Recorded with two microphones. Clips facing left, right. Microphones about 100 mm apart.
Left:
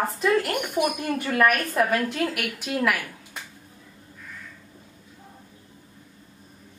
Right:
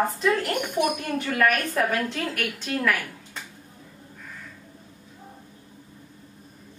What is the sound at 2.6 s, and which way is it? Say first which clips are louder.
Speech: left 1 dB; 10° left (ahead or behind).